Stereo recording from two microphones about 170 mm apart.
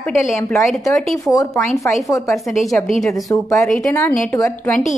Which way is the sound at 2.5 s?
Centre (ahead or behind).